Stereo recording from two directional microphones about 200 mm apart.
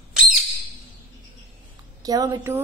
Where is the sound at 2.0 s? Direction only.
20° right (ahead or behind).